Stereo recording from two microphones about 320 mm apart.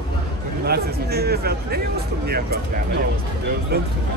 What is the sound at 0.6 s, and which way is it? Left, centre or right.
Speech, right.